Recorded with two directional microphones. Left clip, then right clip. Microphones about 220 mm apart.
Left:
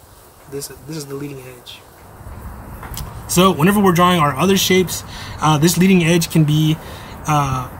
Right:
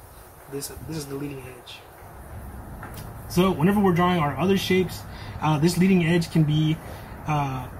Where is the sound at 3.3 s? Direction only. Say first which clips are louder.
Left 8 dB; 50° left (ahead or behind).